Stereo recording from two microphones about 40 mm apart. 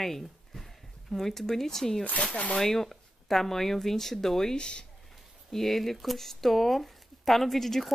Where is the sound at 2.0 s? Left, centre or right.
Left.